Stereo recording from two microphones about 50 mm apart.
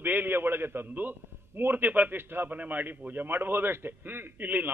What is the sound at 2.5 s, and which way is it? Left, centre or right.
A man's voice, right.